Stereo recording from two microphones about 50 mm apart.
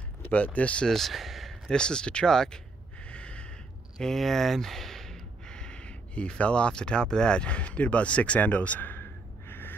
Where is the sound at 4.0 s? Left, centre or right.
Centre.